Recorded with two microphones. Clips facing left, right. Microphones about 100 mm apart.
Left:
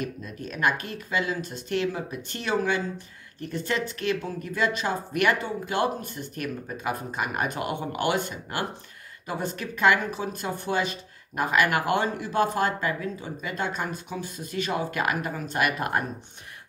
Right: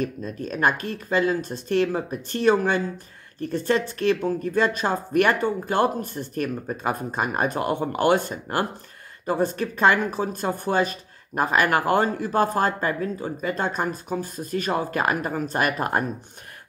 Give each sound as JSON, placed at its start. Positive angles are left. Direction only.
{"t": 0.0, "sound": "speech", "side_deg": -35}